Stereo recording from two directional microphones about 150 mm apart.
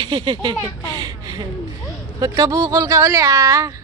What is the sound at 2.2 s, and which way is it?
Speech, 25° right (ahead or behind).